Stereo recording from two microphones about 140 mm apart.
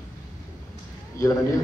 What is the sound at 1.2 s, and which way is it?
Speech, 20° left (ahead or behind).